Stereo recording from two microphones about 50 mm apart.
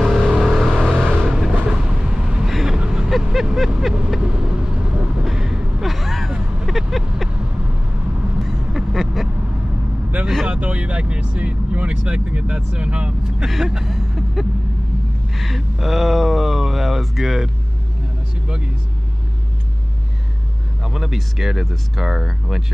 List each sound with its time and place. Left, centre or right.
0.0 s vehicle: centre
0.7 s vehicle: centre
1.2 s vehicle: centre
4.2 s vehicle: centre
8.4 s duck: centre
10.2 s vehicle: centre
10.6 s vehicle: right
13.5 s vehicle: centre
15.3 s a sound: centre
20.8 s speech: centre